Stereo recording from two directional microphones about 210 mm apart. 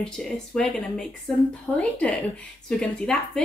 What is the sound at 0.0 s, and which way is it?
Speech, centre (ahead or behind).